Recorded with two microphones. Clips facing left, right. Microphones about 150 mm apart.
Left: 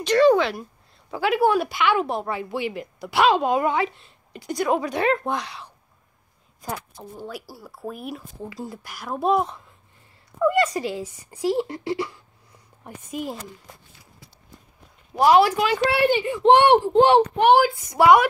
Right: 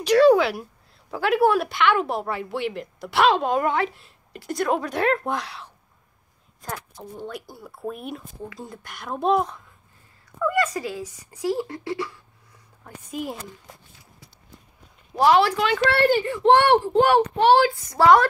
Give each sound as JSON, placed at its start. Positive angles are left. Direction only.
{"t": 0.0, "sound": "speech", "side_deg": -5}
{"t": 10.4, "sound": "speech", "side_deg": 25}
{"t": 13.1, "sound": "speech", "side_deg": 0}
{"t": 15.4, "sound": "speech", "side_deg": 10}
{"t": 16.3, "sound": "speech", "side_deg": 20}